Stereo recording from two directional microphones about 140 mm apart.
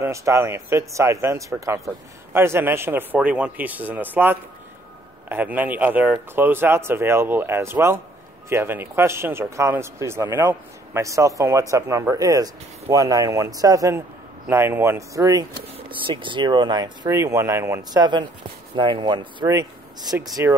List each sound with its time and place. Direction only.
0.0 s speech: 20° right (ahead or behind)
15.9 s speech: 35° right (ahead or behind); by 18.0 s 20° right (ahead or behind)
18.0 s speech: 30° right (ahead or behind)